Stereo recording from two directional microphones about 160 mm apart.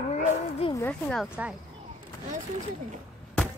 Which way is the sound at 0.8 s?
5° left (ahead or behind).